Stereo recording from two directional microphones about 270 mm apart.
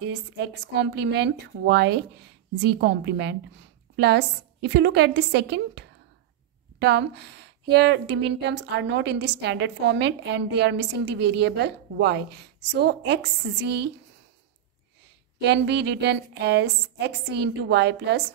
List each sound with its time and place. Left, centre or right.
0.0 s a woman's voice: right
15.4 s a woman's voice: right